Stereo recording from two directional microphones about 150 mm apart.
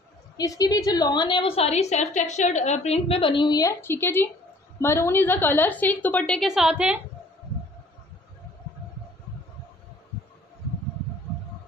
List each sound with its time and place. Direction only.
0.4 s a woman's voice: 25° left (ahead or behind)
3.8 s a woman's voice: 15° left (ahead or behind); by 7.0 s 5° right (ahead or behind)